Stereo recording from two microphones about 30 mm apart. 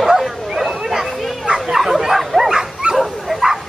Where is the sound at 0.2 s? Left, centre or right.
Centre.